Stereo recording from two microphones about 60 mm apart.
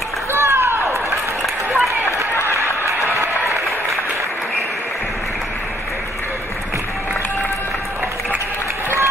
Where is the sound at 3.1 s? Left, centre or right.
Right.